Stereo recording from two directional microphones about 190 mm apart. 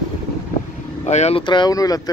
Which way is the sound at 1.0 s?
35° left (ahead or behind).